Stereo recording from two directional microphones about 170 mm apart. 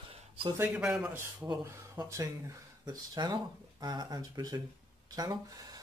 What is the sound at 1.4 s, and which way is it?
Speech, 20° right (ahead or behind).